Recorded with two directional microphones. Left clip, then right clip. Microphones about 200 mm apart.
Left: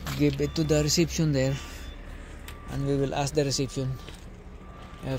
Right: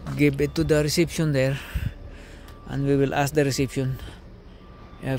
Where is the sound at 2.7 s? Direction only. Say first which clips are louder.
Right 6 dB; 40° right (ahead or behind).